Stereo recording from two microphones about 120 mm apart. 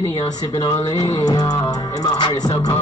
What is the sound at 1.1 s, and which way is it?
Music, 35° left (ahead or behind).